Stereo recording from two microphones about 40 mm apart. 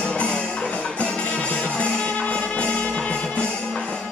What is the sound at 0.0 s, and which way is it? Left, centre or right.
Music, left.